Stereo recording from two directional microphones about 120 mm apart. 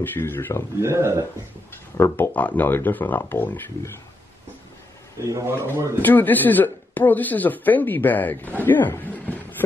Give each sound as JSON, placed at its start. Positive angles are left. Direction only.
{"t": 0.0, "sound": "speech", "side_deg": 15}
{"t": 0.7, "sound": "a man's voice", "side_deg": -20}
{"t": 2.0, "sound": "speech", "side_deg": 20}
{"t": 5.3, "sound": "a man's voice", "side_deg": -25}
{"t": 6.0, "sound": "speech", "side_deg": 15}